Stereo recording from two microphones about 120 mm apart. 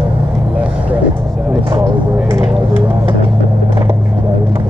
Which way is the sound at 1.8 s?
25° right (ahead or behind).